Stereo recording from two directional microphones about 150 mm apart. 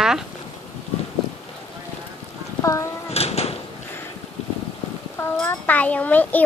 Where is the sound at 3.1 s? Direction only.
45° left (ahead or behind).